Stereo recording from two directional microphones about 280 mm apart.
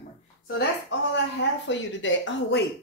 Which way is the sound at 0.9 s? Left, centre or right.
Left.